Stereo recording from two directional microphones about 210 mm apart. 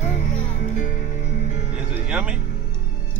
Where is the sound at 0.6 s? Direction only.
35° left (ahead or behind).